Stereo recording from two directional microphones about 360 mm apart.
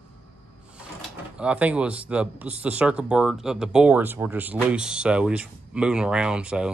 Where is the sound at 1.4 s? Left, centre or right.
Centre.